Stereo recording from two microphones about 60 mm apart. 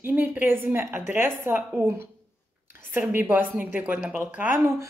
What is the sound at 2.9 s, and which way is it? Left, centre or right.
A woman's voice, right.